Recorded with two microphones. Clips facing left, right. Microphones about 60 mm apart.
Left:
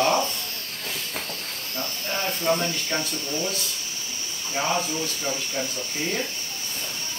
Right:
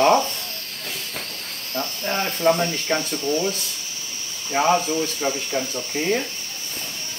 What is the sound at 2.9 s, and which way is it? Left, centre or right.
Speech, right.